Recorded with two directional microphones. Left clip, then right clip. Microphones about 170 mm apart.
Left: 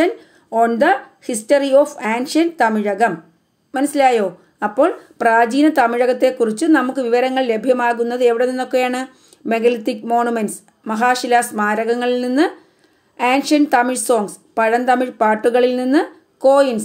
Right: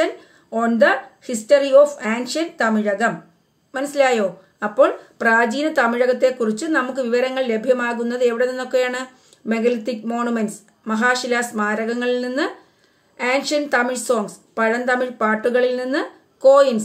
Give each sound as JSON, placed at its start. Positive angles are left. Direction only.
{"t": 0.0, "sound": "a woman's voice", "side_deg": 40}